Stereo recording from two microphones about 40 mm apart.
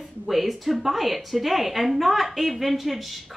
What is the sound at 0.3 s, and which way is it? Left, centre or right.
A woman's voice, centre.